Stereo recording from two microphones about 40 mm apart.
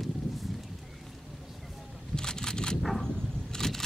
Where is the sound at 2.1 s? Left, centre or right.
Centre.